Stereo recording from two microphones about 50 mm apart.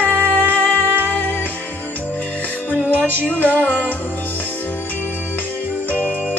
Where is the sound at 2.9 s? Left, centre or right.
Left.